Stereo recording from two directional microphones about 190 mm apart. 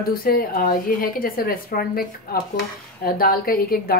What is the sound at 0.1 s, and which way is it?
A woman's voice, 50° left (ahead or behind).